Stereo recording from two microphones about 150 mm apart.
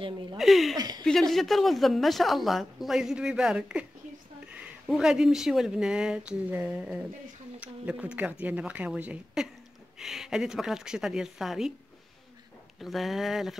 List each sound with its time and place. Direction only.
0.4 s speech: centre (ahead or behind)
0.7 s speech: 25° right (ahead or behind)
1.0 s a woman's voice: 5° left (ahead or behind)
12.8 s speech: centre (ahead or behind)